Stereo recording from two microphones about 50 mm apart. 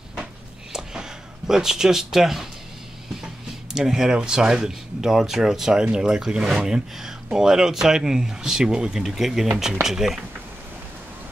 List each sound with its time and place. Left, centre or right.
1.5 s speech: centre
3.7 s speech: centre